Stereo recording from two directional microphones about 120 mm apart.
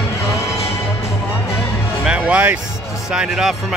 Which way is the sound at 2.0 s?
10° right (ahead or behind).